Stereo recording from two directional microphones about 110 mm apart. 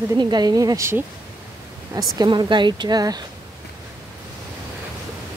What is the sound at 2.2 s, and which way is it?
Speech, 45° right (ahead or behind).